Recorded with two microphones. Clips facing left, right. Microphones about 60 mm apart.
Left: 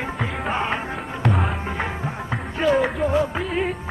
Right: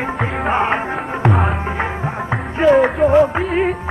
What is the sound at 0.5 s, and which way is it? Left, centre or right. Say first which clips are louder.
Music: right 8 dB; right.